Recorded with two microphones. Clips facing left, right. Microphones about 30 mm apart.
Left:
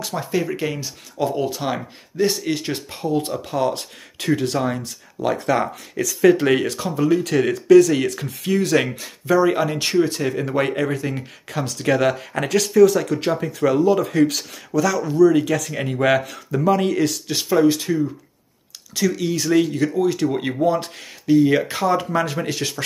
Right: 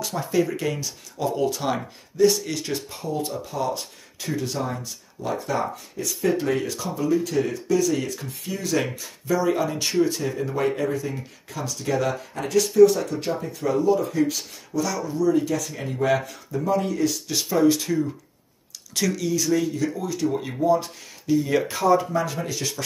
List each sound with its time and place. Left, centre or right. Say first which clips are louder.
0.0 s speech: even; left
2.1 s speech: right 1 dB; left
6.0 s speech: left 6 dB; left
6.3 s speech: left 6 dB; left
7.2 s speech: left 8 dB; left
8.5 s speech: left 7 dB; left
17.3 s speech: left 3 dB; left
19.1 s speech: left 5 dB; left
22.1 s speech: left 4 dB; left